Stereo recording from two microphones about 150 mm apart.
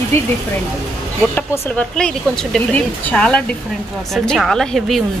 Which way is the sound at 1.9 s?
5° left (ahead or behind).